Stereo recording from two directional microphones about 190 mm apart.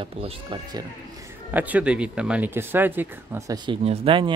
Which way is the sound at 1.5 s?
10° right (ahead or behind).